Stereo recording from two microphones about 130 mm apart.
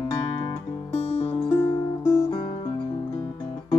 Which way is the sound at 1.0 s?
55° left (ahead or behind).